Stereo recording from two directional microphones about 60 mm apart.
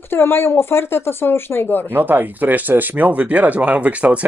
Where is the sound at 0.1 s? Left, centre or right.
Left.